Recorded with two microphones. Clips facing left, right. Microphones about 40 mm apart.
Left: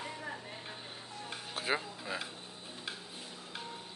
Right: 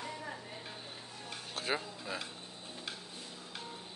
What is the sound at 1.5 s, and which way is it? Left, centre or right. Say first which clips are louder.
Music: left 2 dB; centre.